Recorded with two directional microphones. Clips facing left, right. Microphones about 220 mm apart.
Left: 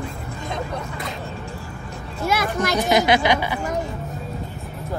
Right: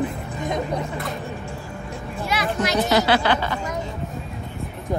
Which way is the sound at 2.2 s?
45° left (ahead or behind).